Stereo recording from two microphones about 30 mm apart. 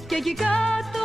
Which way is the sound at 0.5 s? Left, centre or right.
Left.